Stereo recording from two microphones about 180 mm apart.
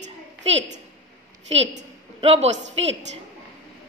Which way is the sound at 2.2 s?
35° right (ahead or behind).